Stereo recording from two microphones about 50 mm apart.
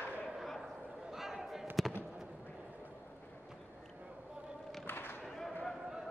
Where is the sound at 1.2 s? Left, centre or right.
Centre.